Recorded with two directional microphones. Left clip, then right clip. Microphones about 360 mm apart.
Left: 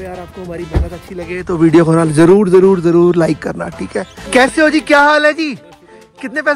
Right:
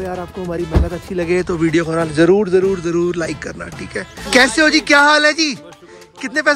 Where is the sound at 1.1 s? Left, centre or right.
Centre.